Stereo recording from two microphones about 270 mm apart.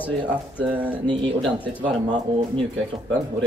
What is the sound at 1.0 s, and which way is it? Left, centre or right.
Speech, centre.